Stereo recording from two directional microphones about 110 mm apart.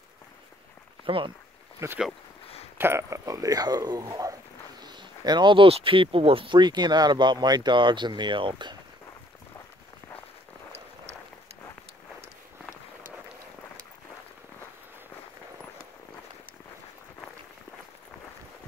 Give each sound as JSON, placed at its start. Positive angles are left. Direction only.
{"t": 1.0, "sound": "speech", "side_deg": -50}
{"t": 1.8, "sound": "speech", "side_deg": -25}
{"t": 2.4, "sound": "a sound", "side_deg": 65}
{"t": 2.8, "sound": "speech", "side_deg": -25}